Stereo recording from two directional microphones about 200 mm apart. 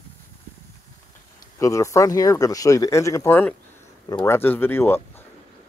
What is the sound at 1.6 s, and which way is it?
Speech, 15° left (ahead or behind).